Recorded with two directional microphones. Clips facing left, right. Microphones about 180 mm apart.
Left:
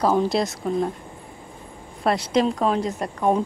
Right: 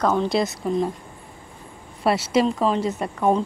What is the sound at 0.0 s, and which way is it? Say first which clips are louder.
Speech: left 1 dB; 5° left (ahead or behind).